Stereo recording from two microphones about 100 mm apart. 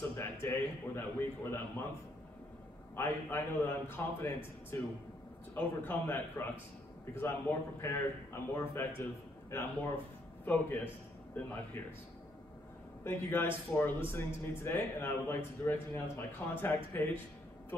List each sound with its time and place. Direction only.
0.1 s a man's voice: 30° left (ahead or behind)
3.0 s a man's voice: 20° left (ahead or behind)
13.0 s a man's voice: 25° left (ahead or behind)